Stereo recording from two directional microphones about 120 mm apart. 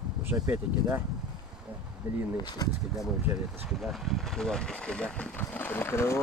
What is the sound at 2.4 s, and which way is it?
Speech, 35° left (ahead or behind).